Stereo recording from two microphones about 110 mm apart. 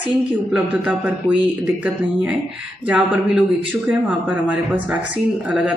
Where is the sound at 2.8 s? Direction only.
15° right (ahead or behind).